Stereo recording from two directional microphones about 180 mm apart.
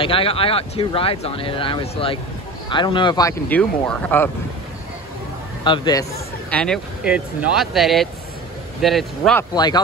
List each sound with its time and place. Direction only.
0.0 s speech: 30° left (ahead or behind)
3.4 s speech: 10° left (ahead or behind)
5.6 s speech: 25° left (ahead or behind)
6.5 s speech: 5° left (ahead or behind)
9.4 s speech: 20° left (ahead or behind)